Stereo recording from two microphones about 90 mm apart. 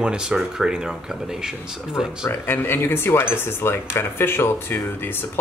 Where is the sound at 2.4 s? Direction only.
25° left (ahead or behind).